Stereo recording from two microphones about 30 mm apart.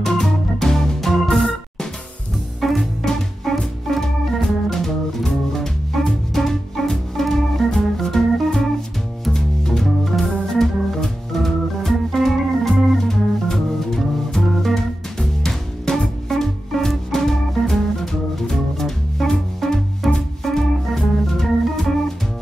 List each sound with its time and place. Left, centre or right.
0.0 s organ: centre
2.6 s music: centre
3.5 s organ: centre
9.3 s music: centre
9.8 s organ: centre
13.0 s music: centre
20.9 s organ: centre